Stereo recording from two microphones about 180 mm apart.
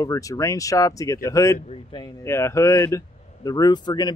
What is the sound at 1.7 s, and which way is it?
Speech, 25° left (ahead or behind).